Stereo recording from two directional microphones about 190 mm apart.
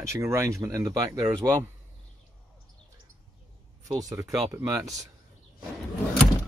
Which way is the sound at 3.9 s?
20° right (ahead or behind).